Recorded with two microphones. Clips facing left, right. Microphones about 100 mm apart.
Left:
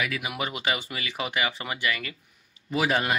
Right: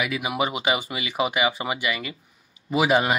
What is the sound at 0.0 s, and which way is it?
Speech, 15° right (ahead or behind).